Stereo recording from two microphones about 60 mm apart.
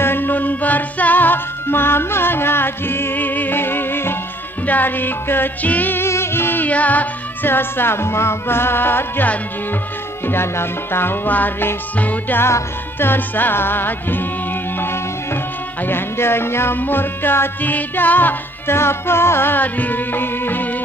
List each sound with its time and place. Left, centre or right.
0.0 s music: left
6.0 s music: left
6.7 s music: left
7.4 s music: left
12.4 s music: left
18.8 s music: left